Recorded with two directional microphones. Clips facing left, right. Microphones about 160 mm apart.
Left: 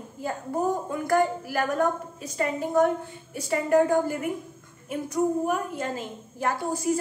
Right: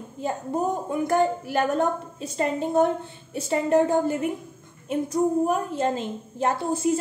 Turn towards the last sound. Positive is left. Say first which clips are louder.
# right 3 dB
turn(degrees=-25)  # may be behind; listen again after turning